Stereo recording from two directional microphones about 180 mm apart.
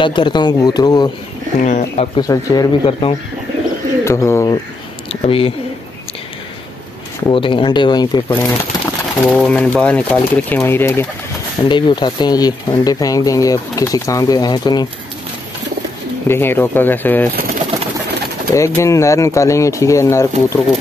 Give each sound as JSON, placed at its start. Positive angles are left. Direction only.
{"t": 0.0, "sound": "speech", "side_deg": 25}
{"t": 1.6, "sound": "speech", "side_deg": 45}
{"t": 2.1, "sound": "speech", "side_deg": 20}
{"t": 4.0, "sound": "speech", "side_deg": 15}
{"t": 5.2, "sound": "speech", "side_deg": 30}
{"t": 7.2, "sound": "speech", "side_deg": 30}
{"t": 8.4, "sound": "speech", "side_deg": 5}
{"t": 11.6, "sound": "speech", "side_deg": 25}
{"t": 16.3, "sound": "speech", "side_deg": 10}
{"t": 18.5, "sound": "speech", "side_deg": 15}